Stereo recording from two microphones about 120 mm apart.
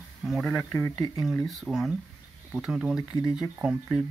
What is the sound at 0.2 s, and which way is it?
Speech, centre (ahead or behind).